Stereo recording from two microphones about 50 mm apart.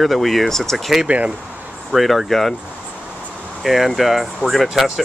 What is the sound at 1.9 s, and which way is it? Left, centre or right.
Speech, centre.